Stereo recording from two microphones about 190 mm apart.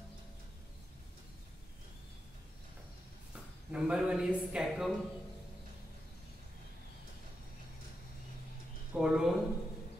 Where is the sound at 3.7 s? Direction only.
5° right (ahead or behind).